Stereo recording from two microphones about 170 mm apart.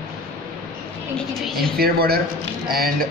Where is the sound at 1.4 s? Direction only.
Centre (ahead or behind).